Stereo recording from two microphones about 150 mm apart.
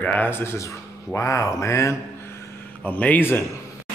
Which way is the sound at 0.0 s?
10° left (ahead or behind).